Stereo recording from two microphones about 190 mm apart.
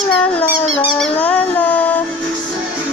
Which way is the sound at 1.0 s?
10° left (ahead or behind).